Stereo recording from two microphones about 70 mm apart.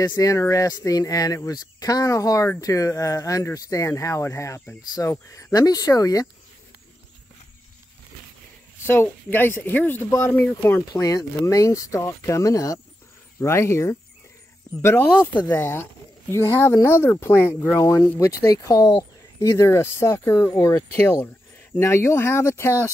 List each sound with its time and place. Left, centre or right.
0.2 s speech: left
5.5 s speech: left
8.8 s speech: left
10.9 s speech: left
13.4 s speech: left
15.0 s speech: centre
15.5 s speech: left
17.7 s speech: left